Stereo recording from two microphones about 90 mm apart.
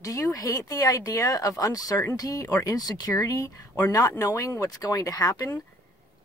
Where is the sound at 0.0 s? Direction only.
40° left (ahead or behind).